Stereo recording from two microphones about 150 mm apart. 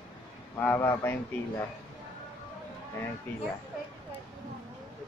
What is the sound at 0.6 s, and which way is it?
Speech, 15° left (ahead or behind).